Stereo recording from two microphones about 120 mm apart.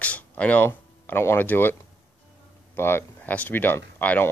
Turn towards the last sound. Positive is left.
turn(degrees=15)  # may be behind; listen again after turning